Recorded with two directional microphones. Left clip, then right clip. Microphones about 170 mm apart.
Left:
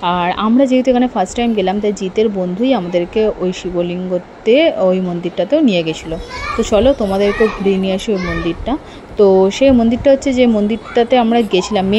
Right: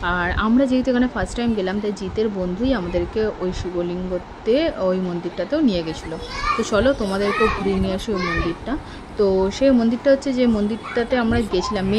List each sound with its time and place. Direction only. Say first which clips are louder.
0.0 s a woman's voice: left 6 dB; 20° left (ahead or behind)
9.2 s a woman's voice: left 8 dB; 25° left (ahead or behind)